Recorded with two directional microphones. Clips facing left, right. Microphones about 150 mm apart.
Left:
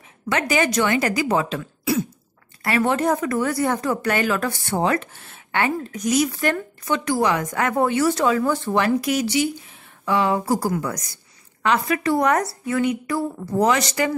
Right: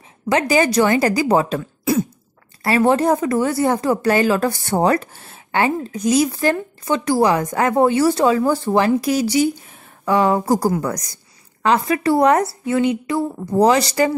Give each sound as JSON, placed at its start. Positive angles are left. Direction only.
{"t": 0.3, "sound": "a woman's voice", "side_deg": -35}
{"t": 13.6, "sound": "speech", "side_deg": -35}